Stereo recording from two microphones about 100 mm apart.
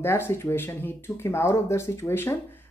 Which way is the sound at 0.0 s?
25° left (ahead or behind).